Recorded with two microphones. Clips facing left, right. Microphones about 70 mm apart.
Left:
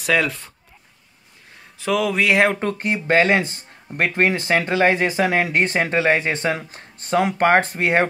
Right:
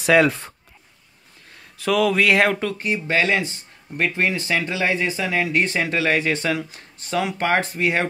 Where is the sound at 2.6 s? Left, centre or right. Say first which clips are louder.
Left 1 dB; left.